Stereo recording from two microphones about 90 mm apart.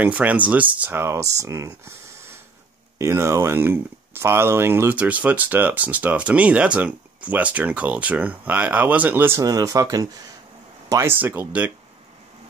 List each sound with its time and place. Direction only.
0.0 s speech: 15° right (ahead or behind); by 2.0 s 35° right (ahead or behind)
3.0 s speech: 30° right (ahead or behind)
9.4 s speech: 40° right (ahead or behind)
11.1 s speech: 25° right (ahead or behind)